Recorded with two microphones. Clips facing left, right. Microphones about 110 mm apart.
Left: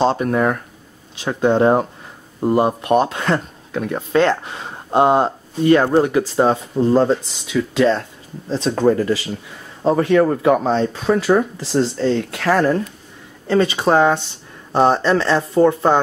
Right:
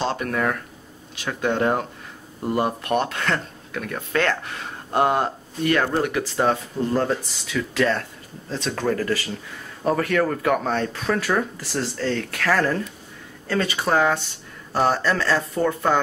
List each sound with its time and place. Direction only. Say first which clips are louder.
0.0 s speech: left 7 dB; 30° left (ahead or behind)